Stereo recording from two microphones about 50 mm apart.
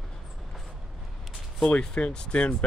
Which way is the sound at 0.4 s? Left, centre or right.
Centre.